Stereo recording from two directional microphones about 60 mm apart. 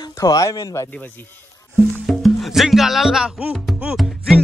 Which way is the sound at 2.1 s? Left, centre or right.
Centre.